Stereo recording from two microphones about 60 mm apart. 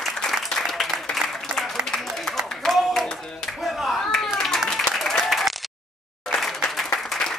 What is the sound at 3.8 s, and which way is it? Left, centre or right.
Clapping, centre.